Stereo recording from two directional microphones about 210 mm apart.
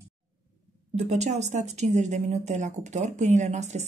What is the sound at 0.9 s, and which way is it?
Speech, 30° right (ahead or behind).